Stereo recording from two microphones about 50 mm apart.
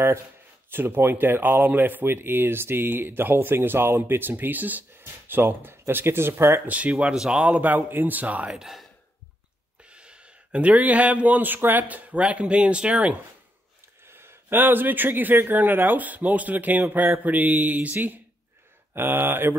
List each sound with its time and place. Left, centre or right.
0.7 s speech: right
6.7 s speech: right
8.5 s speech: centre
9.8 s speech: right
14.0 s speech: right